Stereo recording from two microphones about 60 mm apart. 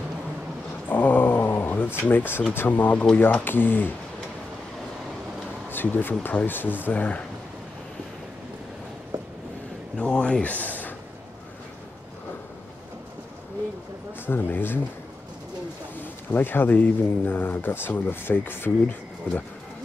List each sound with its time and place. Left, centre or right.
0.8 s dog: left
2.0 s speech: left
5.7 s speech: left
9.9 s a sound: centre
14.2 s speech: left
16.3 s speech: left